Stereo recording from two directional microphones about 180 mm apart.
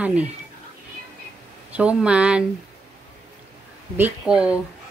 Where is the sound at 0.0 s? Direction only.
5° right (ahead or behind).